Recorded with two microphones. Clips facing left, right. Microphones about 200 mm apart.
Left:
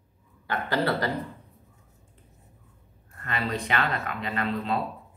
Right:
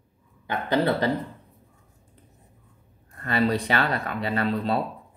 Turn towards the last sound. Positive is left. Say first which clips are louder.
# right 4 dB
turn(degrees=-35)  # may be behind; listen again after turning